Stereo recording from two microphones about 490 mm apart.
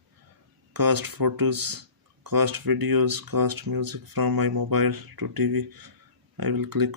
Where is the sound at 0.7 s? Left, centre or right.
Right.